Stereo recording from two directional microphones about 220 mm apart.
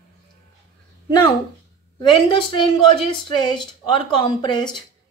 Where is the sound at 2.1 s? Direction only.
20° left (ahead or behind).